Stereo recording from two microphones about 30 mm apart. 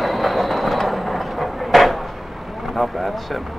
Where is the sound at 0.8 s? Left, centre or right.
Centre.